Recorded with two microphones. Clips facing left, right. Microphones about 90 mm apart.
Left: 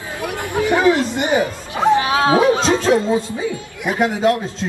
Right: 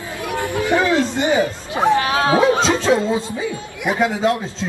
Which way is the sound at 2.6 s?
20° right (ahead or behind).